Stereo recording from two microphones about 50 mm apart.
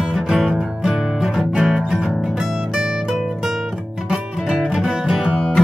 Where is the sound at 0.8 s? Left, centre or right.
Centre.